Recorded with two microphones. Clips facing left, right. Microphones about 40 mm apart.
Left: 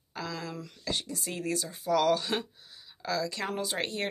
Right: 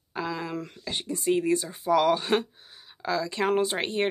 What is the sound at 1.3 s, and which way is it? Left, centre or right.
Speech, right.